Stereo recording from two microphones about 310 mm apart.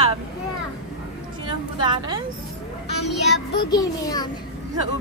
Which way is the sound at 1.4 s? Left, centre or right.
Centre.